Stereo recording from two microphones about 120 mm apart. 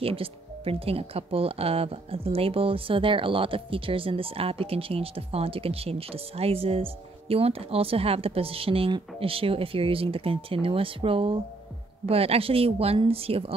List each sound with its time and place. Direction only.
0.0 s speech: 50° right (ahead or behind)